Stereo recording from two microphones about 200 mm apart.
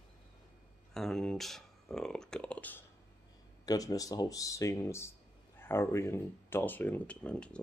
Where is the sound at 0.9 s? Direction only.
Centre (ahead or behind).